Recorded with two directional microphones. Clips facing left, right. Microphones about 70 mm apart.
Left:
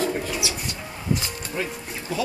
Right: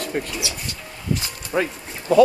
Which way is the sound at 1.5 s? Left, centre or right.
Right.